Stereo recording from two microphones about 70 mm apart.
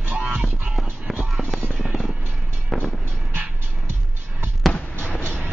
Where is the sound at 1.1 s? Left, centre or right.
Centre.